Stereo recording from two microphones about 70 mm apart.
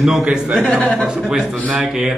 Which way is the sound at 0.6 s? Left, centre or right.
Centre.